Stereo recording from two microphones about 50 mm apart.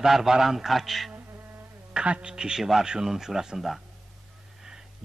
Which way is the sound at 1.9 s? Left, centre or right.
Right.